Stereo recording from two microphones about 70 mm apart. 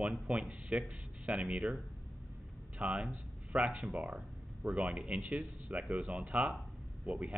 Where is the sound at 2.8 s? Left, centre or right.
Centre.